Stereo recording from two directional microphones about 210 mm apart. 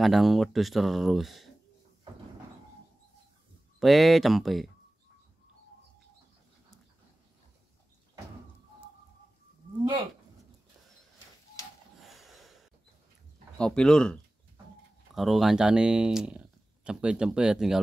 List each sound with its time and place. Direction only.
0.0 s speech: centre (ahead or behind)
3.8 s speech: centre (ahead or behind)
12.0 s snort: centre (ahead or behind)
13.6 s speech: 5° left (ahead or behind)